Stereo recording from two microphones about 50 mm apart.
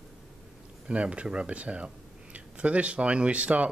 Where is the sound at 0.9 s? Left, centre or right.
Right.